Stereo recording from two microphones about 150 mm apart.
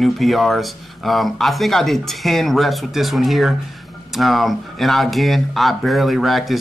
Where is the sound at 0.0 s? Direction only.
Centre (ahead or behind).